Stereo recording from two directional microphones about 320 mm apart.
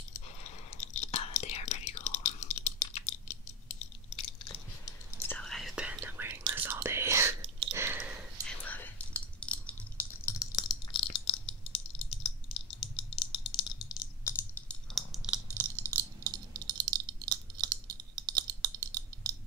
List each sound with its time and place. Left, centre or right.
0.4 s whispering: left
4.8 s whispering: centre
18.1 s clicking: centre